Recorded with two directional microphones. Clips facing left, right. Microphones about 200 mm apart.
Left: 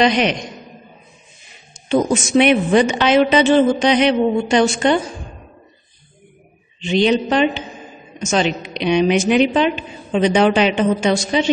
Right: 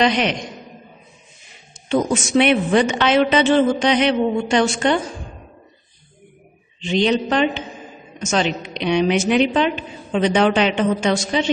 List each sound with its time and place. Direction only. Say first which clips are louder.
0.0 s a woman's voice: left 2 dB; 15° left (ahead or behind)
1.9 s a woman's voice: left 2 dB; 15° left (ahead or behind)
6.8 s a woman's voice: left 2 dB; 5° left (ahead or behind)